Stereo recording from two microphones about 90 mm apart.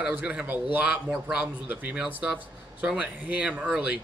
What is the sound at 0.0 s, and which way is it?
Speech, 15° right (ahead or behind).